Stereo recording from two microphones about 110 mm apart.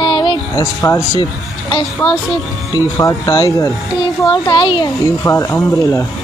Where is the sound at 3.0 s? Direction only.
35° left (ahead or behind).